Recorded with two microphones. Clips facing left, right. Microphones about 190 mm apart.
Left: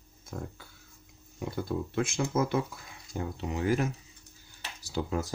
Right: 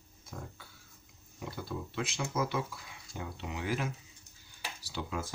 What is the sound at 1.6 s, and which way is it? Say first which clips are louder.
Speech: left 7 dB; 45° left (ahead or behind).